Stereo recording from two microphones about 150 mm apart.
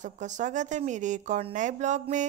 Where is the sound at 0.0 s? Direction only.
55° right (ahead or behind).